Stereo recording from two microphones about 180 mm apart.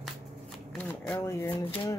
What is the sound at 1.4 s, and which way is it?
Speech, 25° left (ahead or behind).